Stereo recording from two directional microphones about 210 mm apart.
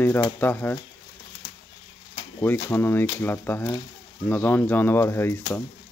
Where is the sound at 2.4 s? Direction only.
10° left (ahead or behind).